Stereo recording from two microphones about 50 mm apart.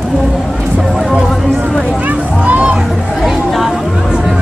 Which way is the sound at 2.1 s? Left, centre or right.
Right.